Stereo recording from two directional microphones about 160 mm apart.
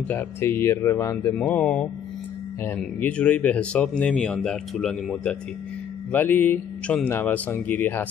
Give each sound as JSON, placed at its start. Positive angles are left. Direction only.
{"t": 0.1, "sound": "speech", "side_deg": 15}
{"t": 1.3, "sound": "speech", "side_deg": 5}